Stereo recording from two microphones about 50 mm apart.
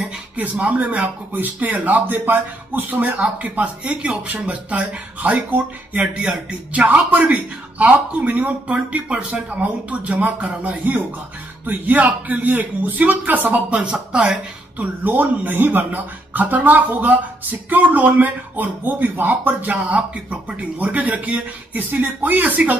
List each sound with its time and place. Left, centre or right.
0.4 s a man's voice: right
14.8 s speech: right